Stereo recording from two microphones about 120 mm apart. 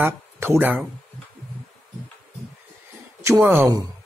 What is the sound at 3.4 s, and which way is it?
Speech, 15° right (ahead or behind).